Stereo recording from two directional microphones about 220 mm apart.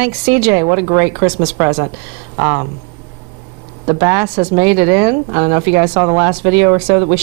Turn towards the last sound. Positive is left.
turn(degrees=-20)  # may be behind; listen again after turning